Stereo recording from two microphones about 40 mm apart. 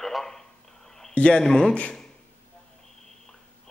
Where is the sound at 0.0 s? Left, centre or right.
Centre.